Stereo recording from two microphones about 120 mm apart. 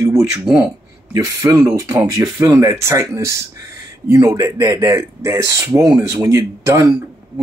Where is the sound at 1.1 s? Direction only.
30° right (ahead or behind).